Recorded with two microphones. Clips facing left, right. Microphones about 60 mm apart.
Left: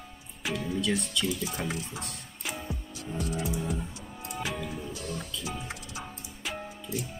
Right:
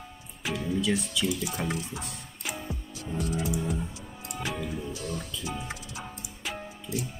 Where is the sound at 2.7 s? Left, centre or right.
Centre.